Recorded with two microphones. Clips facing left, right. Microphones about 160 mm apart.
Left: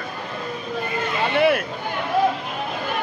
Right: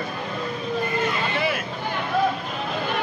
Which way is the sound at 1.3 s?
60° left (ahead or behind).